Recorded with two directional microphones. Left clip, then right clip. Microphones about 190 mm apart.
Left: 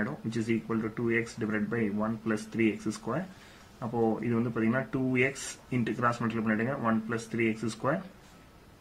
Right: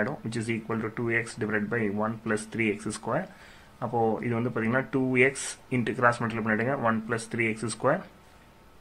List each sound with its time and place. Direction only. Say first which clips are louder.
0.0 s speech: right 3 dB; 15° right (ahead or behind)